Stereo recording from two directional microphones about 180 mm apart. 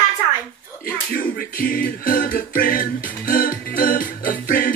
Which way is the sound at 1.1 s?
55° left (ahead or behind).